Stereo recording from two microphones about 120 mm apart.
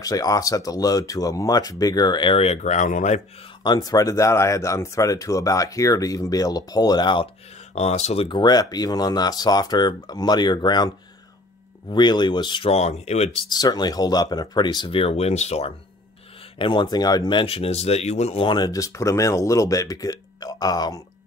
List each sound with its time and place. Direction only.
0.0 s speech: 30° left (ahead or behind); by 3.2 s 90° left
3.6 s speech: 35° left (ahead or behind)
7.7 s speech: 60° left (ahead or behind)
8.3 s speech: 35° left (ahead or behind)
11.9 s speech: 40° left (ahead or behind)
12.7 s speech: 65° left (ahead or behind)
13.5 s speech: 35° left (ahead or behind); by 15.7 s 65° left (ahead or behind)
16.5 s speech: 45° left (ahead or behind); by 18.4 s 65° left (ahead or behind)
18.4 s speech: 35° left (ahead or behind)